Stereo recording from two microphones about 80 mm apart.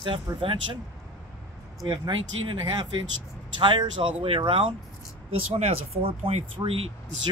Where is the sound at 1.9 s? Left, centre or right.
Right.